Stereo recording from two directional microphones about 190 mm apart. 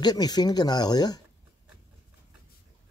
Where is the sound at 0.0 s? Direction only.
20° left (ahead or behind).